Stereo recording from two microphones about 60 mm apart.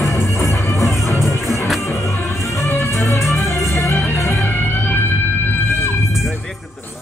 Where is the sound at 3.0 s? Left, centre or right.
Left.